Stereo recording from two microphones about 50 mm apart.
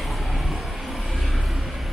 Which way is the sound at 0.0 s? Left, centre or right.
Centre.